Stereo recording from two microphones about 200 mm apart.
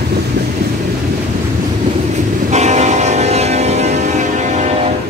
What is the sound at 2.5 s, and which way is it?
Train, 35° right (ahead or behind).